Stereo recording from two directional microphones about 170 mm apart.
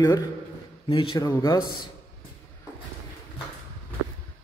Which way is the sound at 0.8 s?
30° left (ahead or behind).